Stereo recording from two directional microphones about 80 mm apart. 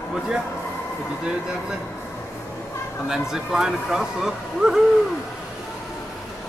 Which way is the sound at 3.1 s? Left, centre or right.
Centre.